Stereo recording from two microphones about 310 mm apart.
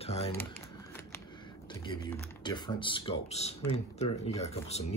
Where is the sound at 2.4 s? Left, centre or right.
Centre.